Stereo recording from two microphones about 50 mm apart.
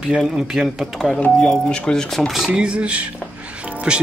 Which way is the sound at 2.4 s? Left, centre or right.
Centre.